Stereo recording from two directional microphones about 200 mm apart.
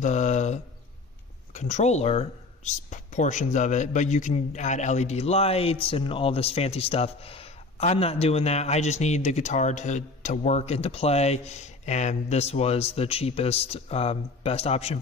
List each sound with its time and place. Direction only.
0.0 s mantra: 35° left (ahead or behind)
1.5 s speech: 35° left (ahead or behind)